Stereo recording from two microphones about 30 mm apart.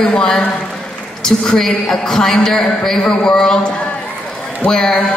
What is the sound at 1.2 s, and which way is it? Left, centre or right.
A man's voice, centre.